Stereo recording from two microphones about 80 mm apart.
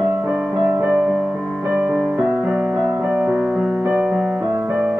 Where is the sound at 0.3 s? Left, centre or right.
Centre.